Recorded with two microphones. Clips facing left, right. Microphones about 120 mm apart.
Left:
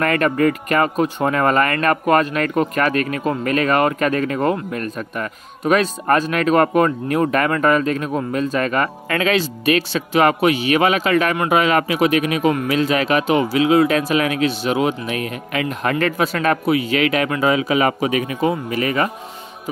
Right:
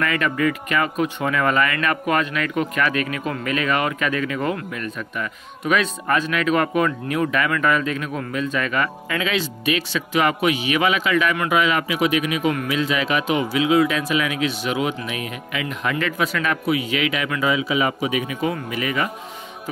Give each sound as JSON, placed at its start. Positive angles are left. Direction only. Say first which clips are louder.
{"t": 0.0, "sound": "speech", "louder": "left 4 dB", "side_deg": 50}
{"t": 14.5, "sound": "speech", "louder": "left 4 dB", "side_deg": 35}